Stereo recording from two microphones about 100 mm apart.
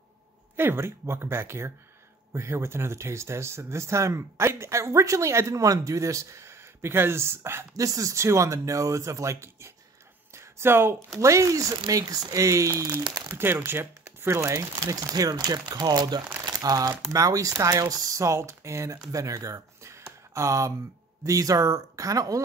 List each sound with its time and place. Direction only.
0.6 s speech: 25° right (ahead or behind)
10.3 s a sound: 25° right (ahead or behind)
11.1 s speech: 30° right (ahead or behind)